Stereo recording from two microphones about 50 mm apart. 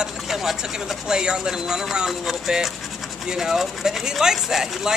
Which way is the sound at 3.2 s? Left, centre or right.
Centre.